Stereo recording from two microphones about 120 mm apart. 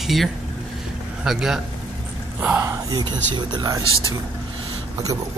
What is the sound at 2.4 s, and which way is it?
Speech, 20° right (ahead or behind).